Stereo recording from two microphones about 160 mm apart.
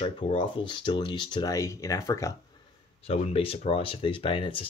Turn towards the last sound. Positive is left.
turn(degrees=30)  # may be behind; listen again after turning